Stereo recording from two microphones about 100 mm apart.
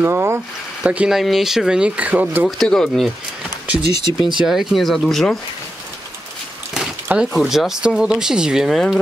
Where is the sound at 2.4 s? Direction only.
5° left (ahead or behind).